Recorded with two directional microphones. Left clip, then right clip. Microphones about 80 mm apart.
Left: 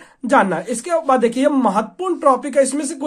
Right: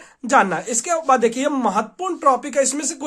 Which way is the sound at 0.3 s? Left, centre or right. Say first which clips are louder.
Left 1 dB; right.